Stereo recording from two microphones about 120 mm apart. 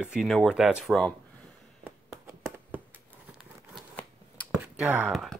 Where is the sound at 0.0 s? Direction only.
5° right (ahead or behind).